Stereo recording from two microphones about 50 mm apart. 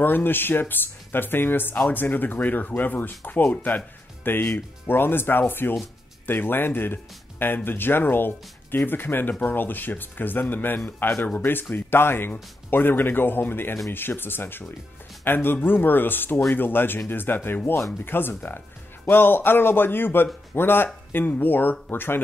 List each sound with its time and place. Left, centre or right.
0.0 s speech: left
11.7 s speech: left